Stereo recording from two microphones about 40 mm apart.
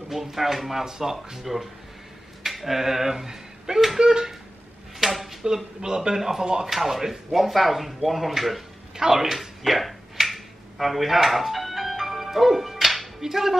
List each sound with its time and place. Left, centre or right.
0.1 s speech: centre
4.9 s drawer open or close: centre
5.8 s speech: centre
9.6 s a sound: centre
13.2 s speech: centre